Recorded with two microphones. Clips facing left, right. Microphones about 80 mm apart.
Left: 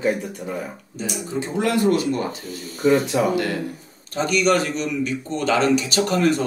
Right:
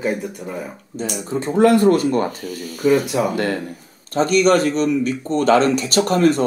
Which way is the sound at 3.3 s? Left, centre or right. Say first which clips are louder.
Right 1 dB; right.